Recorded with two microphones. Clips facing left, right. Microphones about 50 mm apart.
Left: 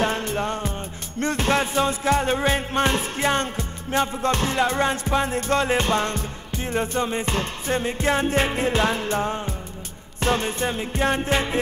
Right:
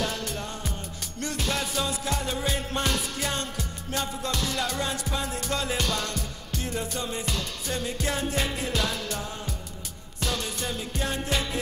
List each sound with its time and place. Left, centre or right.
0.0 s music: left